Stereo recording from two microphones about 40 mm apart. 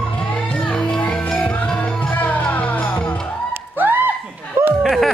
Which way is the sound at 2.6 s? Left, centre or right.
Left.